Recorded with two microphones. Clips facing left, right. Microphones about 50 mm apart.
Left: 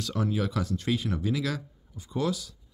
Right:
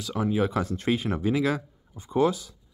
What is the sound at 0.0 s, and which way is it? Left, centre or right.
Speech, centre.